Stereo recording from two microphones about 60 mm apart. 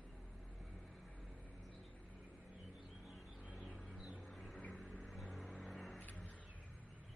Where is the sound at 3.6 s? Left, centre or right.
Centre.